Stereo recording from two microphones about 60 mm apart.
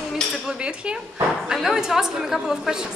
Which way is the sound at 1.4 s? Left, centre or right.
Centre.